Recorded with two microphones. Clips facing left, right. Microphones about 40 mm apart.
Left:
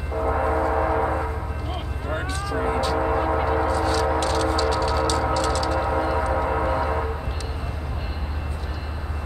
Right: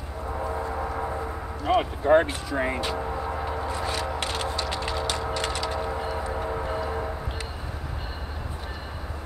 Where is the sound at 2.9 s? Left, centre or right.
Left.